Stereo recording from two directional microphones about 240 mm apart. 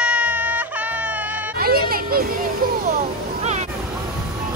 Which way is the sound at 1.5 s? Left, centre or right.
Right.